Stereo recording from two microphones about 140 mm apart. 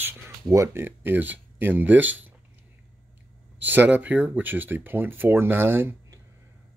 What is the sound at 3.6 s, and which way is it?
Speech, 15° right (ahead or behind).